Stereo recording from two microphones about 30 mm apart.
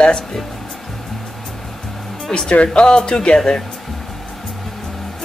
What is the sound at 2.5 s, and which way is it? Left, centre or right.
Speech, left.